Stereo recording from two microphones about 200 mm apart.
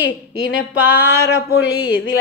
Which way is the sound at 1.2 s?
60° left (ahead or behind).